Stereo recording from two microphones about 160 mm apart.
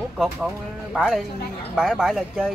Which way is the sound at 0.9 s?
5° right (ahead or behind).